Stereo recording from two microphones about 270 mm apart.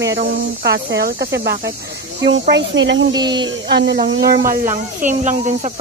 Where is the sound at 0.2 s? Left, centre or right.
Right.